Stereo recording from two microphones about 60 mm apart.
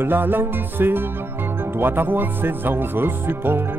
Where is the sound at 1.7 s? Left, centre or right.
Right.